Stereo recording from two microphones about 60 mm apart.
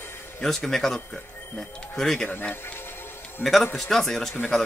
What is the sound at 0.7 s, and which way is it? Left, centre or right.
Speech, centre.